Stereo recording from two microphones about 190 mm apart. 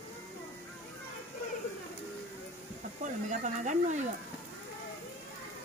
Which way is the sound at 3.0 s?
40° right (ahead or behind).